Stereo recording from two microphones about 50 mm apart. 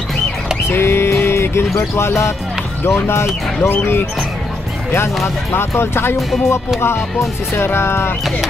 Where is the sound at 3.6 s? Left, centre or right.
Left.